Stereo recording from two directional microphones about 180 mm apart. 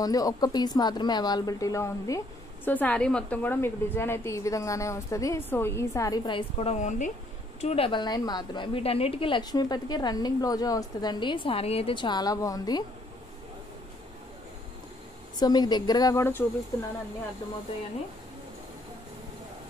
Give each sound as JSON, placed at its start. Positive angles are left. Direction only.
{"t": 0.0, "sound": "a woman's voice", "side_deg": 20}
{"t": 15.3, "sound": "a woman's voice", "side_deg": 20}